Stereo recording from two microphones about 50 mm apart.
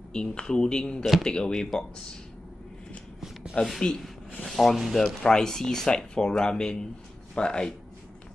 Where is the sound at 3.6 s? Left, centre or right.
Left.